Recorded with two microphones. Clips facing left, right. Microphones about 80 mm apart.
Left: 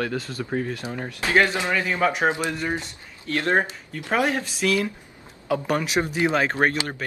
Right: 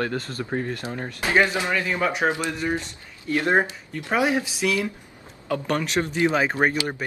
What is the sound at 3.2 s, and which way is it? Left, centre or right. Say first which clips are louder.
Speech: right 1 dB; centre.